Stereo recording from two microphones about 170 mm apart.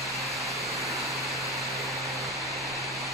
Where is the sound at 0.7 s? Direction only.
Centre (ahead or behind).